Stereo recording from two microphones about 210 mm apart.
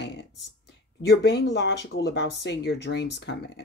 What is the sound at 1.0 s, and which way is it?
Speech, 50° left (ahead or behind).